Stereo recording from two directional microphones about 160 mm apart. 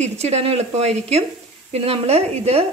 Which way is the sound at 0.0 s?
40° right (ahead or behind).